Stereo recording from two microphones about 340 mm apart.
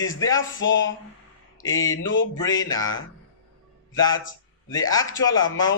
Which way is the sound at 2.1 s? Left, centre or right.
Left.